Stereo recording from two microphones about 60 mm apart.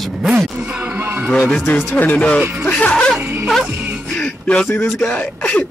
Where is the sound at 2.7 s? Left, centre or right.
Left.